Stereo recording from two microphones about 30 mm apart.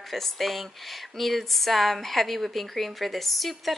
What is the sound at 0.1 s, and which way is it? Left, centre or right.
Speech, centre.